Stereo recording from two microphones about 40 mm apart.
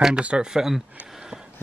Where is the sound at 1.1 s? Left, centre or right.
Centre.